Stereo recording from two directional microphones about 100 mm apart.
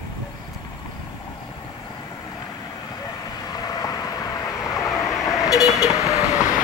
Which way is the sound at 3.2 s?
35° left (ahead or behind).